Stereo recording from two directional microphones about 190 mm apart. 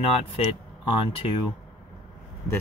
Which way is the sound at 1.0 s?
30° left (ahead or behind).